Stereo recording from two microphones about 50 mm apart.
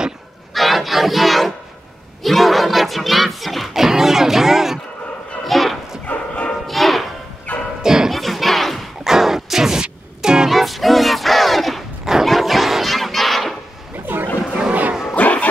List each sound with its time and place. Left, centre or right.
0.6 s battle cry: centre
2.2 s crowd: centre
5.4 s bow-wow: centre
6.0 s bow-wow: left
6.7 s music: centre
7.5 s music: left
7.8 s bow-wow: centre
8.1 s battle cry: centre
9.0 s music: centre
10.5 s battle cry: centre
12.1 s a sound: centre
13.9 s a sound: right
14.7 s music: right
15.1 s bow-wow: left